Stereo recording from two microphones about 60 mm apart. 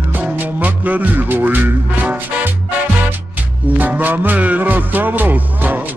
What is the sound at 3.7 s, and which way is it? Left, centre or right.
Music, right.